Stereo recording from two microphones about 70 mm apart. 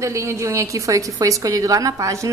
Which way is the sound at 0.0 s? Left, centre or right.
Right.